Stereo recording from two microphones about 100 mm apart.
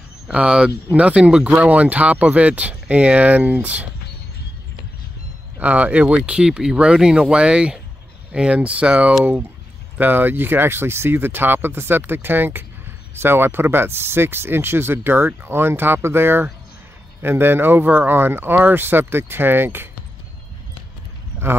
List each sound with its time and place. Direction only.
0.3 s speech: 10° right (ahead or behind)
5.6 s speech: 15° right (ahead or behind)